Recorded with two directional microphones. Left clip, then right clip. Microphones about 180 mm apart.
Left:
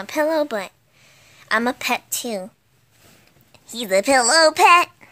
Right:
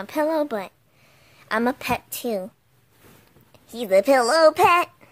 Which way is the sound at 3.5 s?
5° right (ahead or behind).